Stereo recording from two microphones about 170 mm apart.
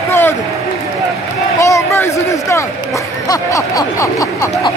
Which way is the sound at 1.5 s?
15° left (ahead or behind).